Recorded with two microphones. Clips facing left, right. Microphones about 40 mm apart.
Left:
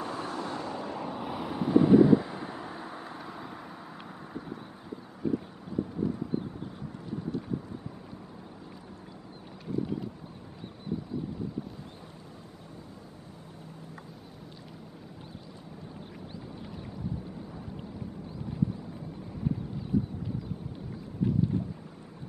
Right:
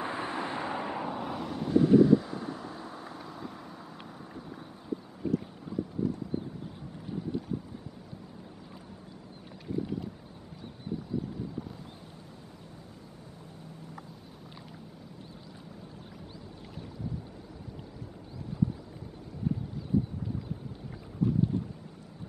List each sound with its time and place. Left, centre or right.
0.0 s vehicle: right
1.0 s vehicle: centre
1.3 s vehicle: centre